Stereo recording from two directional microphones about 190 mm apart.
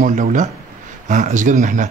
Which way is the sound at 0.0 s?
45° right (ahead or behind).